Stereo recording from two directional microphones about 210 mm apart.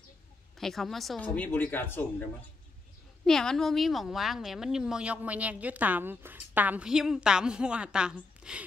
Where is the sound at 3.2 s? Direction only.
Centre (ahead or behind).